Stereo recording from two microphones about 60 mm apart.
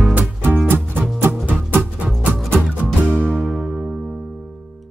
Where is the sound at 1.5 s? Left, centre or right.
Right.